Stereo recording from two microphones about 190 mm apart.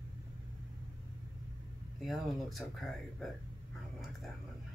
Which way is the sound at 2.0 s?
Centre (ahead or behind).